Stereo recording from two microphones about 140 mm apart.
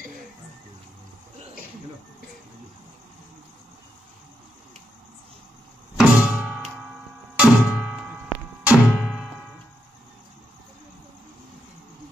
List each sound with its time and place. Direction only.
5.9 s music: 5° right (ahead or behind)